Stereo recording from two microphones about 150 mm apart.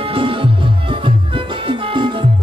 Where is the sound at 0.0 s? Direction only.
35° right (ahead or behind).